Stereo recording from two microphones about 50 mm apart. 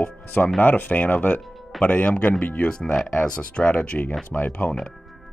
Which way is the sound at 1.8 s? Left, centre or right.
Left.